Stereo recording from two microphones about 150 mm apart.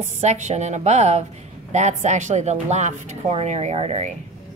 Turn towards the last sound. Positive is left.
turn(degrees=-40)  # may be behind; listen again after turning